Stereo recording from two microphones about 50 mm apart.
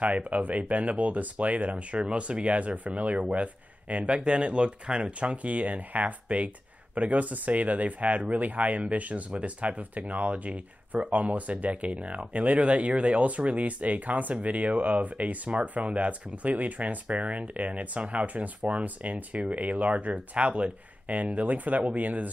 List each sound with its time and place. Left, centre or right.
0.0 s speech: right